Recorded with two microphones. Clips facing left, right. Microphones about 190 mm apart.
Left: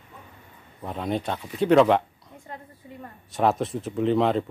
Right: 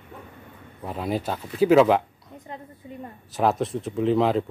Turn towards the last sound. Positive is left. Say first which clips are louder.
# right 1 dB
turn(degrees=0)  # may be behind; listen again after turning